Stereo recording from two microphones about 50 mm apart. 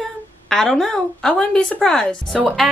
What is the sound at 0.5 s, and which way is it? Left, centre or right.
Speech, centre.